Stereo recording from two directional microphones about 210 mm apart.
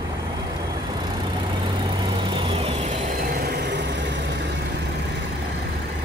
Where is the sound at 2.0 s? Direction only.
20° right (ahead or behind); by 4.5 s 55° right (ahead or behind).